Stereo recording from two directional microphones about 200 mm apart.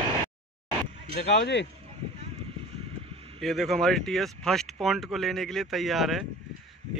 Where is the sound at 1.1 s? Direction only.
60° left (ahead or behind).